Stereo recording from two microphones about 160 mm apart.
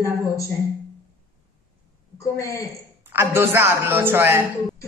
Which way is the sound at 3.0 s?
15° right (ahead or behind).